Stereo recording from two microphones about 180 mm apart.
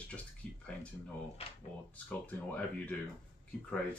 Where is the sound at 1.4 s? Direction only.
35° left (ahead or behind).